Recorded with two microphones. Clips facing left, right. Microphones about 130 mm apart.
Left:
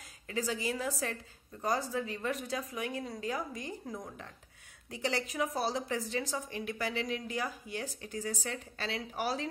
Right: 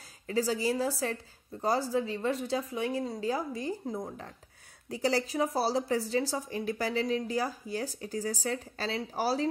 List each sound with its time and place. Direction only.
0.3 s a woman's voice: 35° right (ahead or behind)